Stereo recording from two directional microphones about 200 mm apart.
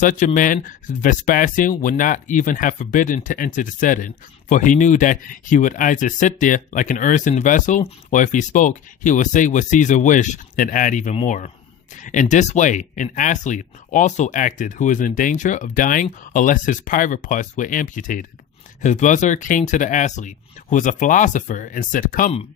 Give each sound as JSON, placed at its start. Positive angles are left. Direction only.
{"t": 0.0, "sound": "speech", "side_deg": 40}